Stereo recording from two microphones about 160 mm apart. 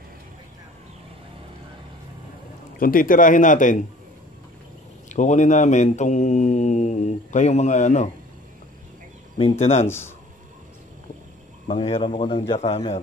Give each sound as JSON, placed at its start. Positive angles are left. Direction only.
{"t": 2.8, "sound": "mantra", "side_deg": 60}
{"t": 5.1, "sound": "mantra", "side_deg": 50}
{"t": 9.4, "sound": "speech", "side_deg": 40}
{"t": 9.8, "sound": "speech", "side_deg": 15}
{"t": 11.6, "sound": "speech", "side_deg": 35}